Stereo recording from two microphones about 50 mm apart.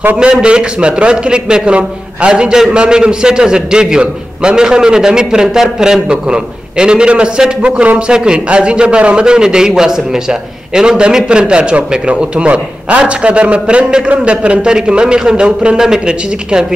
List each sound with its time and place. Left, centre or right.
0.2 s a man's voice: centre